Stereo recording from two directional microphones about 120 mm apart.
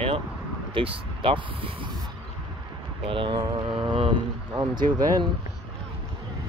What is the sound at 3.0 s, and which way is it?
Speech, 45° right (ahead or behind).